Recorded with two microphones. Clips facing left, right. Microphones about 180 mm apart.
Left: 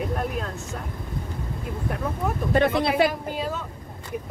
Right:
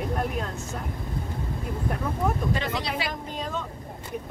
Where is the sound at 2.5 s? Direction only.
55° left (ahead or behind).